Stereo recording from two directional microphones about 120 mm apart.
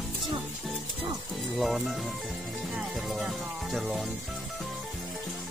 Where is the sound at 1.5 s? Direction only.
Centre (ahead or behind).